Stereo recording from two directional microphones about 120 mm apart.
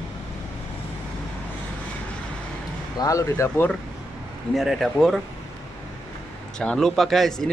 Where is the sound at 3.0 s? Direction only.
25° left (ahead or behind).